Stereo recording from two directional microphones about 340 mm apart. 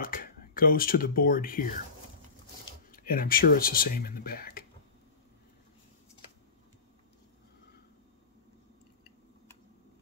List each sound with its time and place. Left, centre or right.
0.0 s speech: left
2.9 s speech: left